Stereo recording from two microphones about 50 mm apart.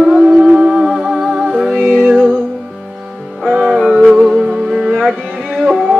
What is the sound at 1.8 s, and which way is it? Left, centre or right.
Music, centre.